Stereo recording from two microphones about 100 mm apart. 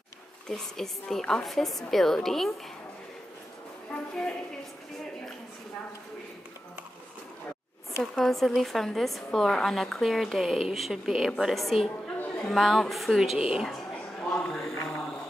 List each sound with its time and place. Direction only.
0.5 s a woman's voice: 5° left (ahead or behind)
3.9 s a woman's voice: 10° left (ahead or behind)
8.0 s a woman's voice: centre (ahead or behind)
14.3 s a sound: 5° left (ahead or behind)